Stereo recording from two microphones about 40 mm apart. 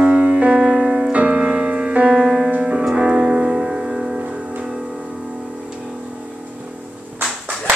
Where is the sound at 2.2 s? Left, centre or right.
Centre.